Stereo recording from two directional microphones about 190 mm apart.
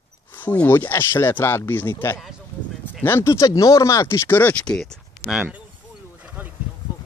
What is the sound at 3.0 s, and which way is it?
Speech, 10° left (ahead or behind).